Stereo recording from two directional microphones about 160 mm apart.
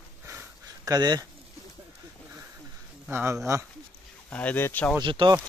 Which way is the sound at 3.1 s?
15° right (ahead or behind).